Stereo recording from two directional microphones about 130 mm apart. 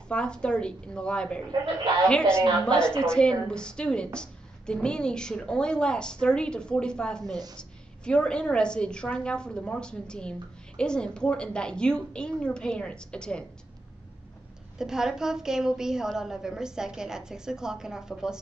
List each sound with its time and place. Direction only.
0.1 s a woman's voice: 5° left (ahead or behind)
7.2 s a woman's voice: 30° right (ahead or behind)
7.5 s a woman's voice: 5° left (ahead or behind)
14.8 s a woman's voice: 5° right (ahead or behind)